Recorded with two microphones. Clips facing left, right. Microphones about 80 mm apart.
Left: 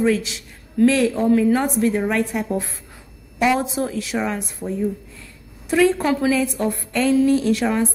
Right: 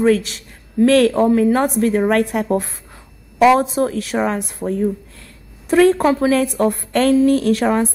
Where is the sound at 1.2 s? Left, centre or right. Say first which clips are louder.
Right 2 dB; right.